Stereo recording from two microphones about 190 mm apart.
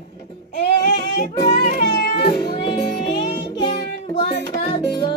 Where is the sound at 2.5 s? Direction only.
25° left (ahead or behind).